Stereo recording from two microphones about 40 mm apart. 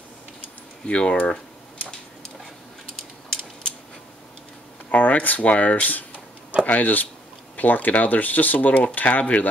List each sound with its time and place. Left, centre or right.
0.8 s speech: left
1.3 s typing: left
4.9 s speech: left